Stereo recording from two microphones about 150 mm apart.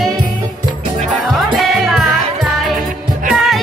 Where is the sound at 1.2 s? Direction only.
Centre (ahead or behind).